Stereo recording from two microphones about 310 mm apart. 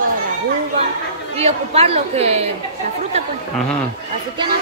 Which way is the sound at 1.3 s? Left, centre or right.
Centre.